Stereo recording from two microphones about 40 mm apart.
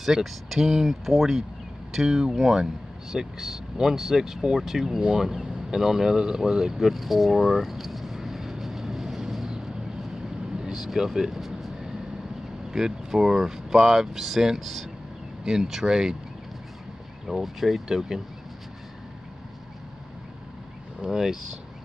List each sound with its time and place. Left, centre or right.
0.0 s speech: centre
5.1 s a sound: centre
10.6 s vehicle: centre
12.7 s speech: centre
15.4 s speech: centre
17.3 s speech: centre
17.8 s speech: centre
21.0 s speech: centre